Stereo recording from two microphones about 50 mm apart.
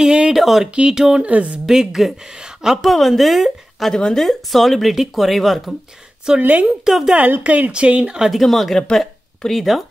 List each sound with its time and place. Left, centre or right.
0.0 s a sound: centre
0.4 s speech: centre
0.7 s a woman's voice: centre
1.2 s speech: right
1.7 s a woman's voice: centre
2.8 s speech: centre
3.8 s speech: centre
6.3 s a woman's voice: centre
7.4 s speech: right
8.3 s speech: centre